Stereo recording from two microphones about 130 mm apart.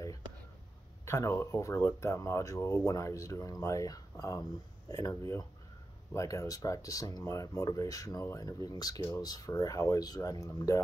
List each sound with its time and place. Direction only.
1.0 s speech: 20° left (ahead or behind)